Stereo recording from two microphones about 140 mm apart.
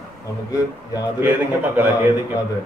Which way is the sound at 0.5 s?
25° left (ahead or behind).